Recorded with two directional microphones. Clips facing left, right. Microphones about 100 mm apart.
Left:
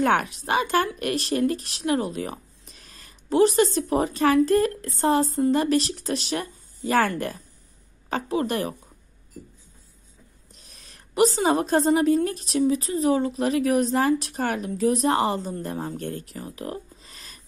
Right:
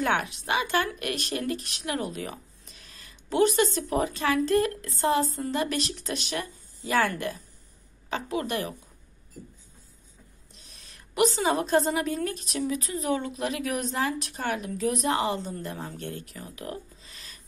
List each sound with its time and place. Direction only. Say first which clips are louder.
0.0 s a woman's voice: left 5 dB; 40° left (ahead or behind)
10.8 s a woman's voice: left 4 dB; 35° left (ahead or behind)